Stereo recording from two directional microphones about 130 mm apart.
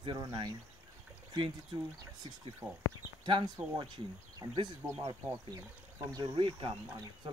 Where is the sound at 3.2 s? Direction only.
35° right (ahead or behind).